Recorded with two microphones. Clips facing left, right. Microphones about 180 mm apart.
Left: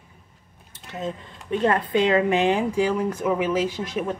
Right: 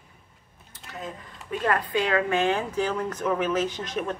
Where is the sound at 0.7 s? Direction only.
25° left (ahead or behind); by 4.2 s 10° left (ahead or behind).